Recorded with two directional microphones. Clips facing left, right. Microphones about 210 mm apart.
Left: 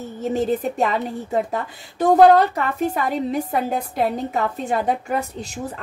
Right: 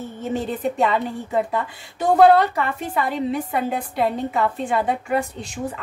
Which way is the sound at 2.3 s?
40° left (ahead or behind).